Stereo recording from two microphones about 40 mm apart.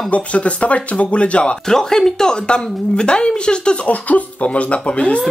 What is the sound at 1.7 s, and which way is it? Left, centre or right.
A woman's voice, centre.